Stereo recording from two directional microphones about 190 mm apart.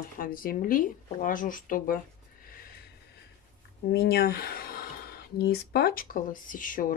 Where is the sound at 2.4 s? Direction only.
50° left (ahead or behind).